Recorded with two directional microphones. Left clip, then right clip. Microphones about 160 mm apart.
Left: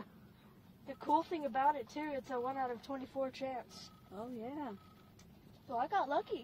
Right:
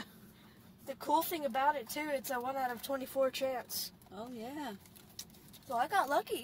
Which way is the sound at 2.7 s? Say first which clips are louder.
Right 5 dB; 35° right (ahead or behind).